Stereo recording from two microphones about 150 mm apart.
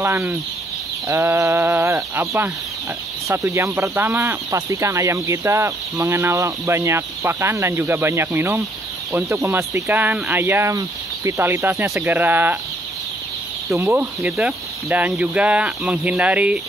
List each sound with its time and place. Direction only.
0.0 s speech: 15° right (ahead or behind)
13.7 s speech: 15° right (ahead or behind)